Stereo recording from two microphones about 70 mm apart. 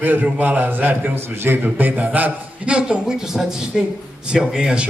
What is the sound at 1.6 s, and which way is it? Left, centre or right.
A man's voice, right.